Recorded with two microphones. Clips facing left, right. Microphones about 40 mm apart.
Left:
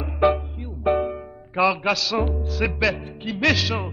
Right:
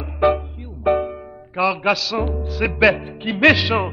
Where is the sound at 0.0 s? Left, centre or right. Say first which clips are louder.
Right 2 dB; centre.